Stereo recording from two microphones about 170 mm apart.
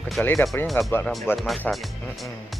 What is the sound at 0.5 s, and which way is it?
Speech, 15° left (ahead or behind).